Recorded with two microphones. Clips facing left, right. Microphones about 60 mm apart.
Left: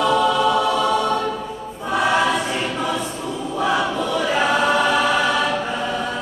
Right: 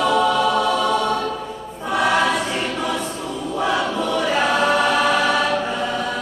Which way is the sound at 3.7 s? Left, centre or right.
Left.